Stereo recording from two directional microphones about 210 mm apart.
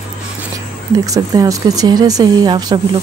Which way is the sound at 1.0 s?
15° right (ahead or behind).